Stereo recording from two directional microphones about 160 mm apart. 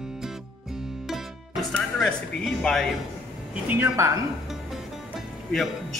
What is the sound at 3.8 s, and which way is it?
Speech, 20° right (ahead or behind).